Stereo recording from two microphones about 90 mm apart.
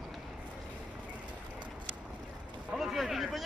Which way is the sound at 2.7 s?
5° right (ahead or behind).